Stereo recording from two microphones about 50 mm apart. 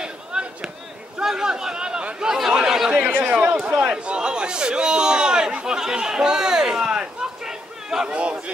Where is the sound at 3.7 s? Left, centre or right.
Right.